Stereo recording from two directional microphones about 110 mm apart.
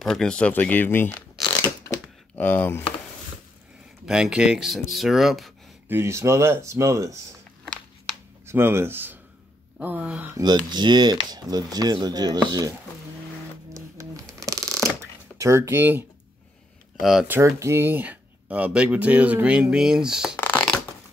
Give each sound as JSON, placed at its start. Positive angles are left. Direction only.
{"t": 0.0, "sound": "speech", "side_deg": 5}
{"t": 1.4, "sound": "a sound", "side_deg": 35}
{"t": 2.3, "sound": "speech", "side_deg": 15}
{"t": 4.0, "sound": "speech", "side_deg": -5}
{"t": 5.9, "sound": "speech", "side_deg": -25}
{"t": 8.5, "sound": "speech", "side_deg": -20}
{"t": 10.4, "sound": "speech", "side_deg": -40}
{"t": 13.7, "sound": "shuffling cards", "side_deg": -30}
{"t": 15.3, "sound": "speech", "side_deg": -25}
{"t": 17.0, "sound": "speech", "side_deg": 0}
{"t": 17.6, "sound": "speech", "side_deg": -25}
{"t": 20.3, "sound": "a sound", "side_deg": 20}